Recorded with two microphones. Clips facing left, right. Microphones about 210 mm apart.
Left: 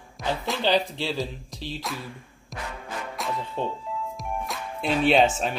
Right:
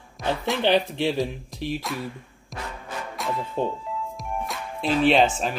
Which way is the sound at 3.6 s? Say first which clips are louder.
Right 4 dB; 10° right (ahead or behind).